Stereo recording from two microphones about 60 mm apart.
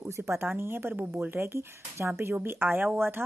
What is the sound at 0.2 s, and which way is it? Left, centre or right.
Speech, right.